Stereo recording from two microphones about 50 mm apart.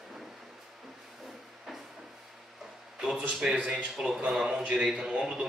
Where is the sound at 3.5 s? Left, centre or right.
Centre.